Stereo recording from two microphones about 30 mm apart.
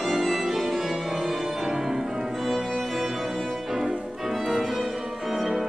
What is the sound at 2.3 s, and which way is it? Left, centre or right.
Music, centre.